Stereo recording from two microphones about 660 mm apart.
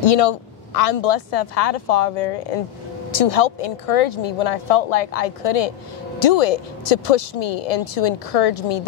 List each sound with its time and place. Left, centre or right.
0.0 s speech: left